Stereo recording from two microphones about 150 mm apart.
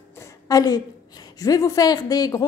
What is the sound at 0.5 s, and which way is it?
A woman's voice, 25° left (ahead or behind).